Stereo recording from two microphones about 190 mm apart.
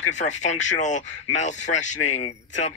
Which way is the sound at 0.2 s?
40° left (ahead or behind).